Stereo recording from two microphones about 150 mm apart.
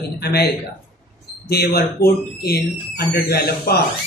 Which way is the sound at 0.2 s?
90° left.